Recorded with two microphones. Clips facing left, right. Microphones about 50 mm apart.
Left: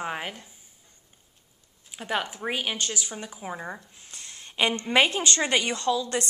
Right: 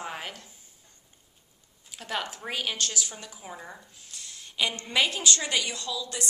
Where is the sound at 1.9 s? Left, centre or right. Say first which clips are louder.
Left 4 dB; centre.